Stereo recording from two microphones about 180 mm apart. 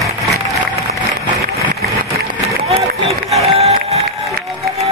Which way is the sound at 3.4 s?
35° right (ahead or behind).